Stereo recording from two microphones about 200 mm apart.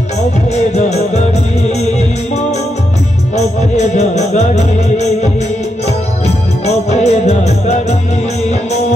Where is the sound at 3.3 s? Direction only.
35° left (ahead or behind).